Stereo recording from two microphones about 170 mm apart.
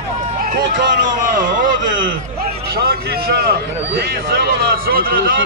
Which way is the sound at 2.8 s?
65° right (ahead or behind).